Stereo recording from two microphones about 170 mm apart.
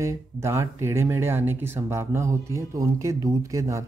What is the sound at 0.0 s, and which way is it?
Speech, 15° right (ahead or behind).